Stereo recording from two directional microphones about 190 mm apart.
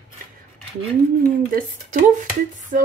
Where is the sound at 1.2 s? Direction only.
50° right (ahead or behind).